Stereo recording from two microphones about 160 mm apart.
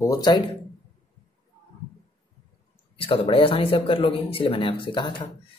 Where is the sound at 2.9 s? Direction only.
35° left (ahead or behind).